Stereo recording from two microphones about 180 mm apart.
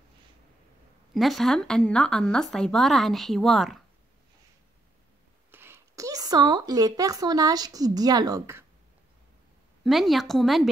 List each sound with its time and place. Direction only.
1.1 s a woman's voice: centre (ahead or behind)
5.5 s speech: 15° right (ahead or behind)
9.8 s a woman's voice: centre (ahead or behind)